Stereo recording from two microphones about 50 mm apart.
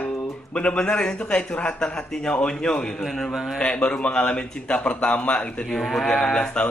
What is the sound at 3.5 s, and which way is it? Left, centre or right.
A man's voice, left.